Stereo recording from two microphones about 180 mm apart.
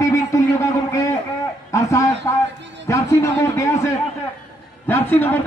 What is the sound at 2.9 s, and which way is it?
Speech, 15° left (ahead or behind).